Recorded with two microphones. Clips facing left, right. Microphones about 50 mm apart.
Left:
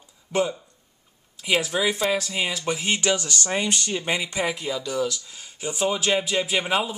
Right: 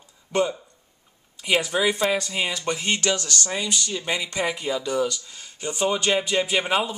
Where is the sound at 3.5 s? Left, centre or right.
Left.